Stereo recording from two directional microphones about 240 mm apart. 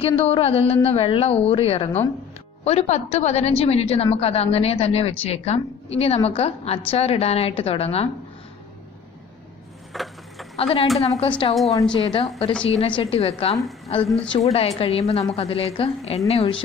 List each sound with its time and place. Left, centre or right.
0.0 s a woman's voice: left
9.9 s speech: centre
10.5 s a woman's voice: left